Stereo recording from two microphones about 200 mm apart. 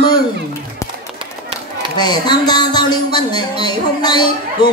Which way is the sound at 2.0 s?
20° left (ahead or behind).